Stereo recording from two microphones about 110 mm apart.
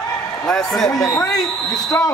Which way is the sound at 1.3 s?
5° left (ahead or behind).